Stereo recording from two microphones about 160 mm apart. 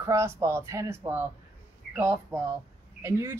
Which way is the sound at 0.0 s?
15° right (ahead or behind).